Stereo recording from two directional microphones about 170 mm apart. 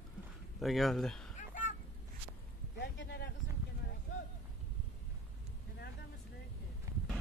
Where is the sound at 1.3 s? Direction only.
50° left (ahead or behind).